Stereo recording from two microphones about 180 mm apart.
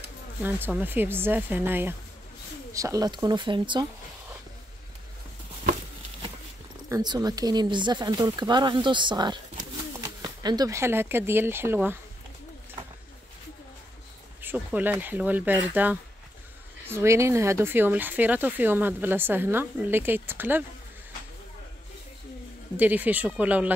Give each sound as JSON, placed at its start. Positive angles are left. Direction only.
{"t": 0.4, "sound": "speech", "side_deg": -10}
{"t": 6.9, "sound": "speech", "side_deg": -20}
{"t": 14.4, "sound": "speech", "side_deg": -10}
{"t": 22.8, "sound": "speech", "side_deg": -10}